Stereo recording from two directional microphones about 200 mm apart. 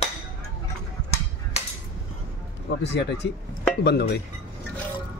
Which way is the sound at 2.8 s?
60° left (ahead or behind).